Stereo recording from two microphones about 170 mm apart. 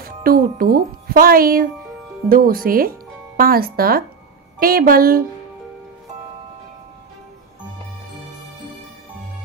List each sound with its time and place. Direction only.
0.0 s speech: 60° right (ahead or behind)